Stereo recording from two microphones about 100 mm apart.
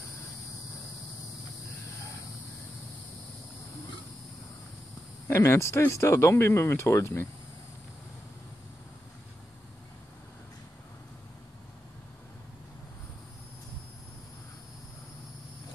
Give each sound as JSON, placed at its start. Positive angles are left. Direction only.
{"t": 5.3, "sound": "speech", "side_deg": 25}